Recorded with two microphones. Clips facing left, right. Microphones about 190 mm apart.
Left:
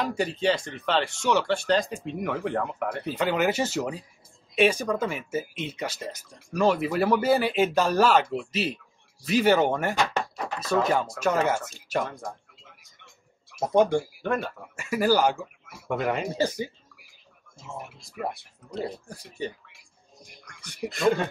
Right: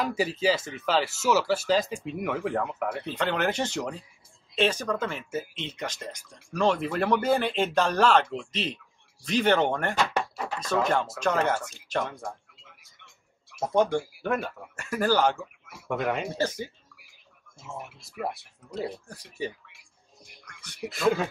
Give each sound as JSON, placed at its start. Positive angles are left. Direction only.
{"t": 0.0, "sound": "speech", "side_deg": -5}
{"t": 3.1, "sound": "speech", "side_deg": 10}
{"t": 13.0, "sound": "a sound", "side_deg": 40}
{"t": 13.7, "sound": "speech", "side_deg": 10}
{"t": 14.2, "sound": "speech", "side_deg": -5}
{"t": 14.8, "sound": "speech", "side_deg": 10}
{"t": 16.3, "sound": "speech", "side_deg": 10}
{"t": 18.2, "sound": "speech", "side_deg": 0}
{"t": 19.7, "sound": "a sound", "side_deg": 40}
{"t": 20.9, "sound": "speech", "side_deg": -5}